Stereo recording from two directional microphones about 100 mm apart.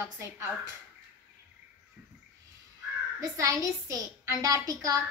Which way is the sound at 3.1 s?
35° right (ahead or behind).